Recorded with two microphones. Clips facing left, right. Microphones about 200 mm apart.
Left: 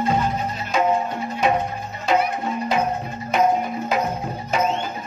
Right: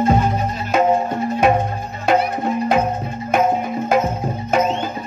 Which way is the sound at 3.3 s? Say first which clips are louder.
Right 2 dB; 50° right (ahead or behind).